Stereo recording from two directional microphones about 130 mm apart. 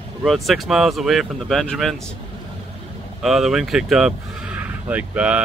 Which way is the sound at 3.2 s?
Centre (ahead or behind).